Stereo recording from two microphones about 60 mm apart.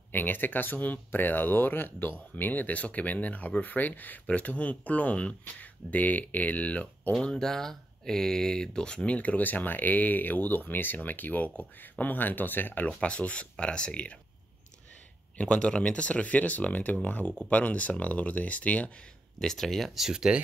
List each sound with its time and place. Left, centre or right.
0.1 s speech: left
7.1 s speech: centre; by 12.8 s left
12.8 s speech: left
15.3 s speech: centre
19.4 s speech: centre
20.0 s speech: centre